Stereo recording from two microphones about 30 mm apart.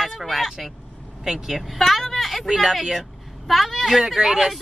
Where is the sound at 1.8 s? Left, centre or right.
Centre.